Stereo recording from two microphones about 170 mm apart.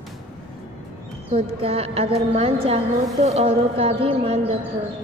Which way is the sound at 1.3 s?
35° right (ahead or behind).